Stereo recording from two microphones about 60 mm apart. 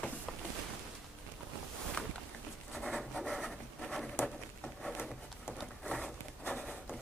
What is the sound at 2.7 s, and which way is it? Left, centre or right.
Writing, centre.